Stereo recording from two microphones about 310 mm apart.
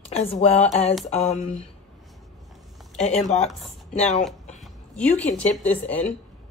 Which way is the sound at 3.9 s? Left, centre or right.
Left.